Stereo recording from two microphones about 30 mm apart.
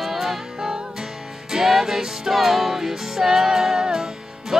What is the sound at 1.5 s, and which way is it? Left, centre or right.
Music, centre.